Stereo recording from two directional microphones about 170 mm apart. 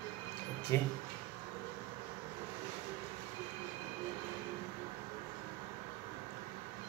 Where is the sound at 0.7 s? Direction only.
15° left (ahead or behind).